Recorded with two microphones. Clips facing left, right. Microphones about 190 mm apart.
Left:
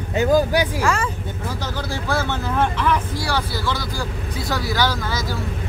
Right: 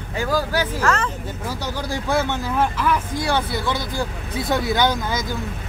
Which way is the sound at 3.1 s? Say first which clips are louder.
Right 2 dB; 20° right (ahead or behind).